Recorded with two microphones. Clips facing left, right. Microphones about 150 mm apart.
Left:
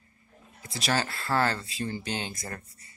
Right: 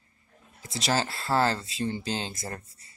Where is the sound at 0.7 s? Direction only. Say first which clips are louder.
Right 1 dB; 25° right (ahead or behind).